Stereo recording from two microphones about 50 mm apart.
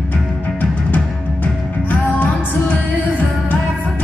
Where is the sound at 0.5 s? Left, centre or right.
Left.